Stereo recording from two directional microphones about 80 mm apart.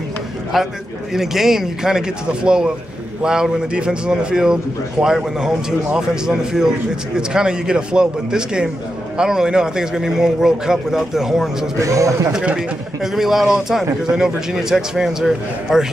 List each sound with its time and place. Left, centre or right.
0.5 s speech: centre
11.8 s a man's voice: right
12.3 s speech: centre